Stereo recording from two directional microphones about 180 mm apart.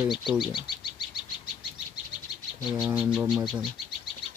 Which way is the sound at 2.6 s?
5° right (ahead or behind).